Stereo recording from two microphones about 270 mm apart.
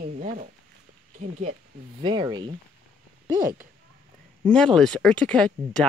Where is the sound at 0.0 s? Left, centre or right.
Right.